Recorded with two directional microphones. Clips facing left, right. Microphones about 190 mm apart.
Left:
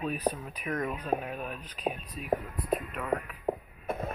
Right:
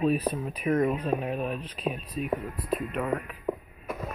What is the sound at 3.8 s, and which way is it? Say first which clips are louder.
Music: left 1 dB; 55° left (ahead or behind).